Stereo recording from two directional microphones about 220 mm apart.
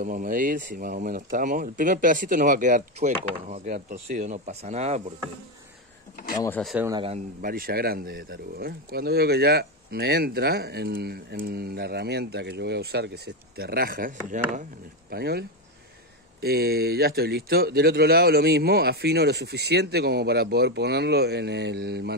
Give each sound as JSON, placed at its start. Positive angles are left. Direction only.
{"t": 0.0, "sound": "speech", "side_deg": -40}
{"t": 6.6, "sound": "speech", "side_deg": 0}
{"t": 6.9, "sound": "a man's voice", "side_deg": -25}
{"t": 7.4, "sound": "speech", "side_deg": -40}
{"t": 15.0, "sound": "speech", "side_deg": -45}